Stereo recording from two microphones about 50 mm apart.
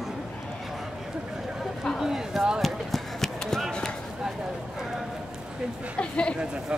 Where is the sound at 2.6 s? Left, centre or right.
Centre.